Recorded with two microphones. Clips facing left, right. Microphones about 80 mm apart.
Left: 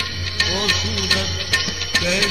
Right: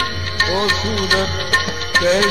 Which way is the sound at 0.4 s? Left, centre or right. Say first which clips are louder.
Right 5 dB; right.